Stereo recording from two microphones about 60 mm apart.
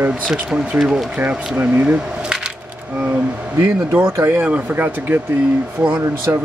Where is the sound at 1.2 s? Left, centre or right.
Right.